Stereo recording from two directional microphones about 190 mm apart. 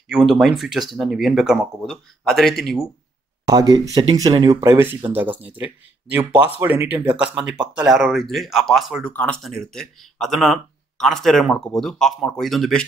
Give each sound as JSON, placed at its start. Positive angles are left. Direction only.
{"t": 0.1, "sound": "speech", "side_deg": 0}
{"t": 3.4, "sound": "speech", "side_deg": -20}
{"t": 6.6, "sound": "speech", "side_deg": -10}